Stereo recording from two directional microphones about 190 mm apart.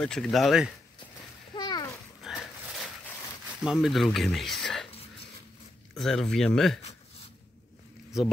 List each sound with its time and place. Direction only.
0.0 s speech: 5° left (ahead or behind)
1.5 s splash: 20° left (ahead or behind)
2.2 s a sound: centre (ahead or behind)
3.6 s speech: centre (ahead or behind)
5.9 s speech: centre (ahead or behind)